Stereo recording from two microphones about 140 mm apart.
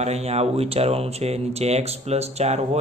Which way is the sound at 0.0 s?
50° right (ahead or behind).